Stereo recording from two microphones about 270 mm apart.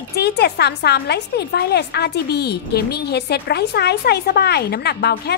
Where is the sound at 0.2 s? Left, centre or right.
Left.